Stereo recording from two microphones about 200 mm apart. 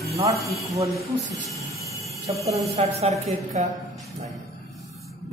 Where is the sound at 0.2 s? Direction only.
30° right (ahead or behind).